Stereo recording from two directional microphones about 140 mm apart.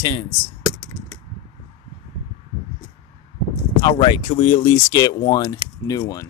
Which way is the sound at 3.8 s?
35° left (ahead or behind).